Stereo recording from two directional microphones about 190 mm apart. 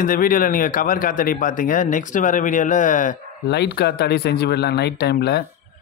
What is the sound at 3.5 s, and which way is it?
Speech, 60° left (ahead or behind).